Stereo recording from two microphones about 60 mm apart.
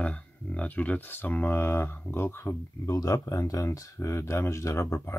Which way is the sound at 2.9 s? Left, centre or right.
Left.